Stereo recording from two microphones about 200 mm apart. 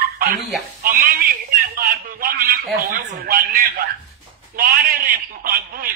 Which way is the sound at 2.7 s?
50° right (ahead or behind).